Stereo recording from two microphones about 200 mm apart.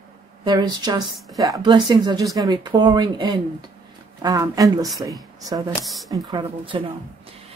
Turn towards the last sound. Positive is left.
turn(degrees=-25)  # may be behind; listen again after turning